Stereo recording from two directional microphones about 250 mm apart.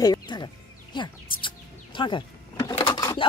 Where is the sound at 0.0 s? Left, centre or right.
Centre.